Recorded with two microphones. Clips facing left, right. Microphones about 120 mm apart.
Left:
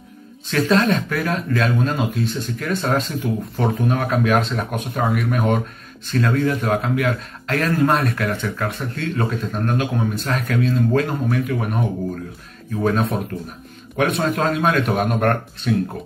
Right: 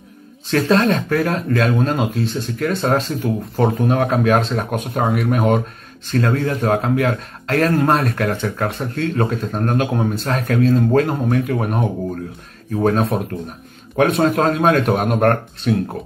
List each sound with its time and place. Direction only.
0.5 s speech: 40° right (ahead or behind)
12.8 s speech: 35° right (ahead or behind)